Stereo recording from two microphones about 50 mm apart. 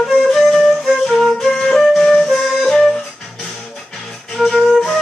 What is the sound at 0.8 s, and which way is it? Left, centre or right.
Flute, centre.